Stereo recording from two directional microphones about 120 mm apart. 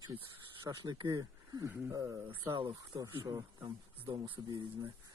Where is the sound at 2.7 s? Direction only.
30° right (ahead or behind).